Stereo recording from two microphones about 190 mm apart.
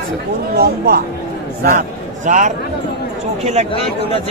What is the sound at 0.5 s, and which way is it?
Speech, 55° right (ahead or behind).